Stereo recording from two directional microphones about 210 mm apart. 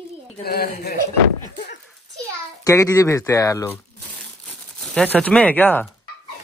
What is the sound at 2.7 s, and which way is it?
Speech, 15° left (ahead or behind).